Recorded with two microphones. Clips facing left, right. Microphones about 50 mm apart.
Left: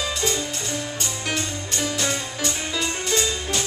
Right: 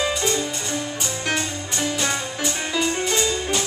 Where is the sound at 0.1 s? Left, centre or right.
Centre.